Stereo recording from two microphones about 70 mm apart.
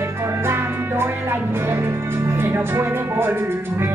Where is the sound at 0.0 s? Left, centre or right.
Right.